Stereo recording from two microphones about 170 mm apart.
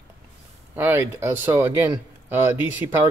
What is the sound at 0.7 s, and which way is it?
Speech, 10° right (ahead or behind).